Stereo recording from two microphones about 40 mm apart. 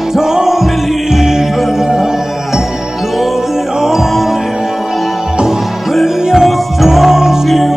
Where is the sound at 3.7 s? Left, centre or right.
Centre.